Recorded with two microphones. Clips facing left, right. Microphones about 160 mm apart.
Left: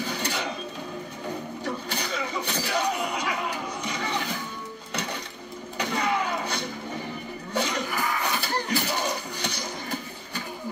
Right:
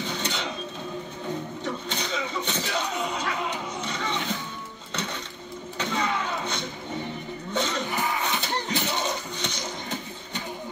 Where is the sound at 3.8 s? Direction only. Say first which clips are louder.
Left 1 dB; 10° left (ahead or behind).